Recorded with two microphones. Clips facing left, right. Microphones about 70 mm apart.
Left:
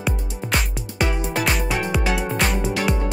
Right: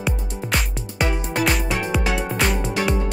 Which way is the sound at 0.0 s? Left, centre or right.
Centre.